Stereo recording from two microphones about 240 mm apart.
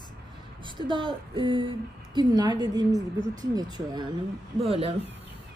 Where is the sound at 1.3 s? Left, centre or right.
Centre.